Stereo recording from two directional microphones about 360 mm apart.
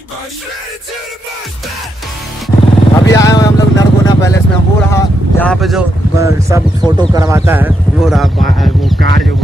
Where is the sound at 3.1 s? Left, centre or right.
Centre.